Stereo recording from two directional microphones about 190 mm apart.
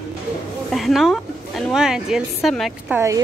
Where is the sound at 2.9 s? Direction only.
15° right (ahead or behind).